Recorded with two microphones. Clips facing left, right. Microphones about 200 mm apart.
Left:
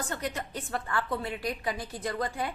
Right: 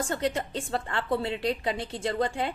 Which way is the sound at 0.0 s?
30° right (ahead or behind).